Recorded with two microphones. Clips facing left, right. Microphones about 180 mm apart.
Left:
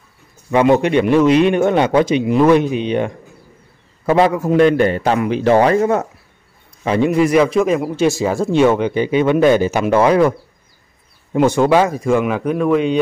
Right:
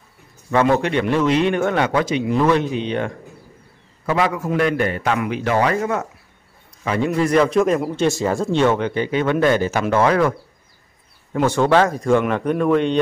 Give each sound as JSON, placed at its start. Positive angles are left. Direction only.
{"t": 0.5, "sound": "a man's voice", "side_deg": 15}
{"t": 4.0, "sound": "a man's voice", "side_deg": 30}
{"t": 11.3, "sound": "speech", "side_deg": 15}